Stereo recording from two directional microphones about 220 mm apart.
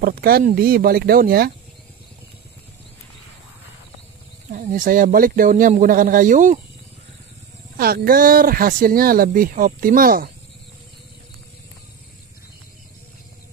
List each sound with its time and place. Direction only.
0.0 s speech: 40° right (ahead or behind)
4.5 s speech: 35° right (ahead or behind)
7.7 s speech: 45° right (ahead or behind)